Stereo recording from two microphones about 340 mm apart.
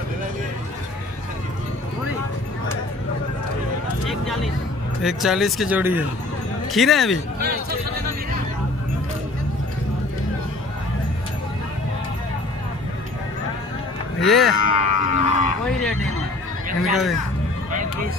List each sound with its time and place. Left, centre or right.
5.0 s speech: centre
14.2 s speech: centre
14.6 s a sound: right
16.8 s speech: centre